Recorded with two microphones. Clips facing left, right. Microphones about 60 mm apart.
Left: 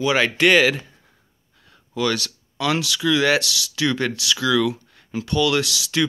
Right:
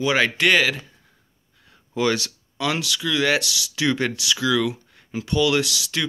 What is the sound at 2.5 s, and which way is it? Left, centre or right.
Speech, centre.